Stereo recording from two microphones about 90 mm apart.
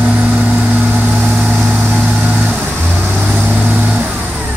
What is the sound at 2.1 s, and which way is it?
Vehicle, 10° right (ahead or behind).